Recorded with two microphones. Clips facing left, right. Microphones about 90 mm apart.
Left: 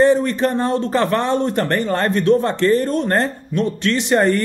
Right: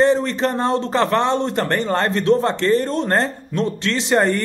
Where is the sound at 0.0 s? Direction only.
30° right (ahead or behind).